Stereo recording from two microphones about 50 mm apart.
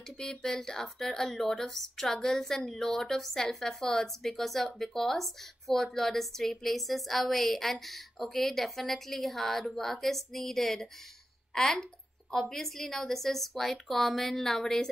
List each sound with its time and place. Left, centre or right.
0.2 s a woman's voice: centre